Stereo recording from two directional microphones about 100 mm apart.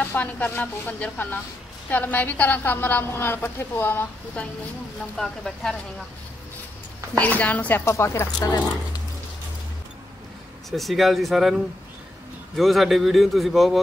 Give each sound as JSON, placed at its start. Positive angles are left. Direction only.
{"t": 0.0, "sound": "a woman's voice", "side_deg": 15}
{"t": 5.1, "sound": "a man's voice", "side_deg": 5}
{"t": 7.2, "sound": "speech", "side_deg": 15}
{"t": 10.7, "sound": "a man's voice", "side_deg": 0}